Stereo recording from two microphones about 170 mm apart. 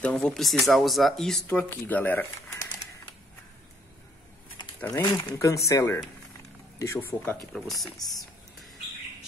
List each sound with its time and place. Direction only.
0.0 s speech: 5° left (ahead or behind)
4.7 s speech: 10° left (ahead or behind)
7.5 s speech: centre (ahead or behind)